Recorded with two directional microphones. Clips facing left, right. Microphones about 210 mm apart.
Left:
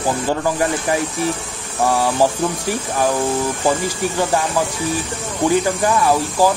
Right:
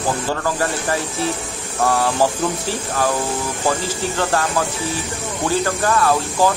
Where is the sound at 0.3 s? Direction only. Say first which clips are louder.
Left 3 dB; 15° left (ahead or behind).